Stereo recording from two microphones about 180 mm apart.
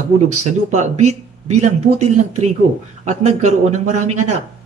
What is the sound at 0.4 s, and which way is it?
Speech, 40° right (ahead or behind).